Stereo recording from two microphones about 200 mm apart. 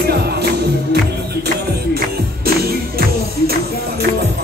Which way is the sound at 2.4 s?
50° right (ahead or behind).